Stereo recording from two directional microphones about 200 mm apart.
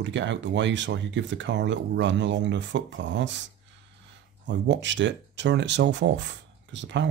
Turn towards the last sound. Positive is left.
turn(degrees=-65)  # may be behind; listen again after turning